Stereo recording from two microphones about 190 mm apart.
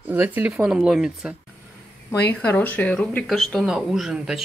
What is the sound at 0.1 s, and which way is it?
Speech, 10° right (ahead or behind).